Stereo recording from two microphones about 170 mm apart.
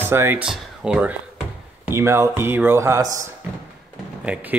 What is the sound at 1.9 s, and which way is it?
Speech, 15° right (ahead or behind).